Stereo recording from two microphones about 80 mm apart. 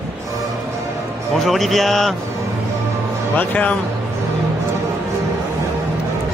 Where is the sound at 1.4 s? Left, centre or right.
Centre.